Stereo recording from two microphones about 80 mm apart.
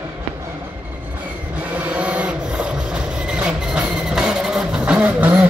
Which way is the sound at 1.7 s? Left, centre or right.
Centre.